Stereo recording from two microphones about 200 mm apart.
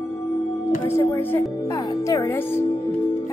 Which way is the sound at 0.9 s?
10° left (ahead or behind).